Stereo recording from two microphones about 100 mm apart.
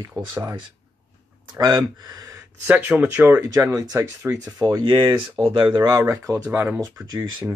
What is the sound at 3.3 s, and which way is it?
Speech, 35° right (ahead or behind).